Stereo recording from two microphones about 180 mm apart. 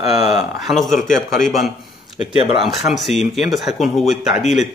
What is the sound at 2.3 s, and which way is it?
Speech, 30° right (ahead or behind).